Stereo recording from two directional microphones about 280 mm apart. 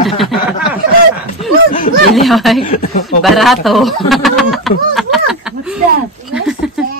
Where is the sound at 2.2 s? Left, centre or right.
Centre.